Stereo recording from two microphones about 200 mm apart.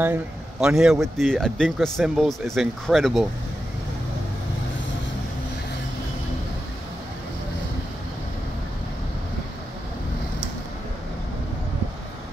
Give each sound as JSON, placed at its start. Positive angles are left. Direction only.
{"t": 0.0, "sound": "speech", "side_deg": -5}